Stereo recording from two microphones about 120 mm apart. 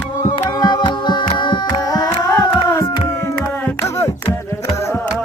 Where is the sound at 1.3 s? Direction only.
40° left (ahead or behind).